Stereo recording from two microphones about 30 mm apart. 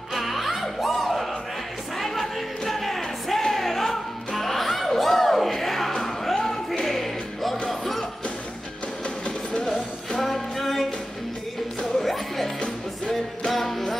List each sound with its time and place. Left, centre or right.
0.1 s music: centre
2.0 s a sound: centre
4.4 s music: centre
9.2 s music: left
10.2 s music: centre
12.0 s music: centre
12.5 s music: left
13.5 s music: centre